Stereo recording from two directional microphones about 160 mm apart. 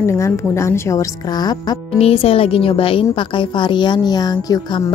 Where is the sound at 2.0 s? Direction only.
35° left (ahead or behind).